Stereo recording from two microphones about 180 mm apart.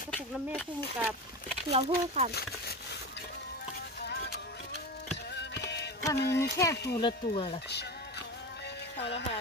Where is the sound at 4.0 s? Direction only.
65° left (ahead or behind).